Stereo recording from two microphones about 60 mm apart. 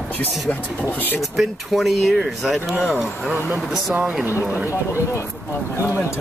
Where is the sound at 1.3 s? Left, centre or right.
Centre.